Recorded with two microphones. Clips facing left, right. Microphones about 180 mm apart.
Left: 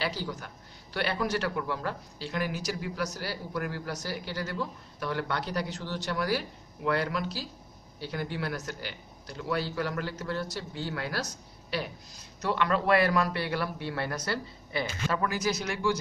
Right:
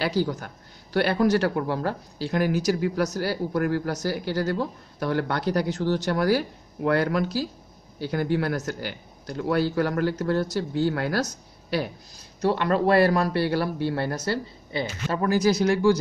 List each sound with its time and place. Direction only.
0.0 s a man's voice: 45° right (ahead or behind)